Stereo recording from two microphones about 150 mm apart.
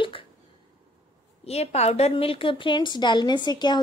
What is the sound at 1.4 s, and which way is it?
Speech, 45° left (ahead or behind).